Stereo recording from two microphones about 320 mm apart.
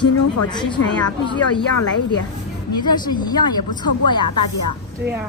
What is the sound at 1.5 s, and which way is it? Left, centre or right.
Speech, left.